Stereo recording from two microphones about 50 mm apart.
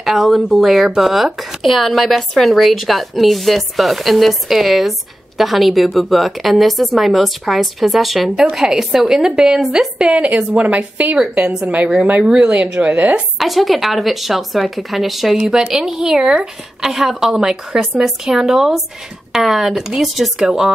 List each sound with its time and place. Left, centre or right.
0.0 s speech: centre
10.3 s a woman's voice: right
13.4 s speech: centre